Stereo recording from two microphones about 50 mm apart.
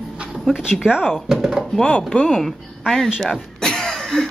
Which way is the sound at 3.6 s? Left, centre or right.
Centre.